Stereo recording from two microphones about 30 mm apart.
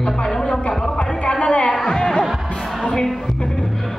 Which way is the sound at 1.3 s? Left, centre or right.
Left.